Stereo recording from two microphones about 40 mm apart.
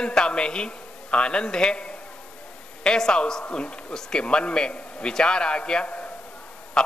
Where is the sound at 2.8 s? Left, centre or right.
Centre.